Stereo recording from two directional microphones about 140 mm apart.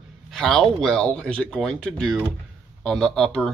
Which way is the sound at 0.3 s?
5° left (ahead or behind).